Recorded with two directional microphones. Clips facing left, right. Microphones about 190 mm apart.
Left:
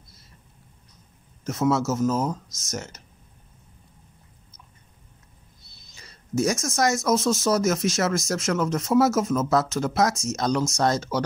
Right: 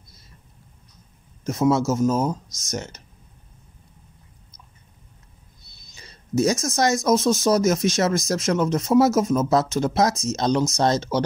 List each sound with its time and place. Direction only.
1.4 s speech: 15° right (ahead or behind)
5.9 s a sound: 15° right (ahead or behind)
6.7 s speech: 20° right (ahead or behind)